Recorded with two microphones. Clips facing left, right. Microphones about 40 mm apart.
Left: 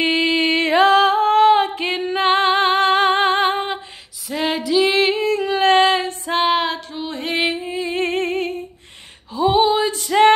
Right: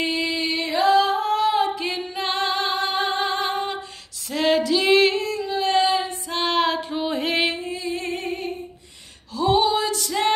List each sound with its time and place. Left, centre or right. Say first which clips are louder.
0.0 s a sound: left 7 dB; left
4.3 s female singing: even; centre
5.4 s female singing: left 6 dB; left
6.4 s music: left 2 dB; centre
6.9 s music: right 3 dB; centre
7.2 s music: left 4 dB; centre
7.8 s music: left 9 dB; left
9.3 s female singing: left 4 dB; left